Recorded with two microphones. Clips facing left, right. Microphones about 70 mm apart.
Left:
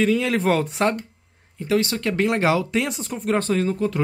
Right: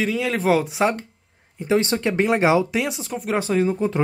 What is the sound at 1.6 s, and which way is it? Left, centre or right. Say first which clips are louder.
Speech: right 2 dB; right.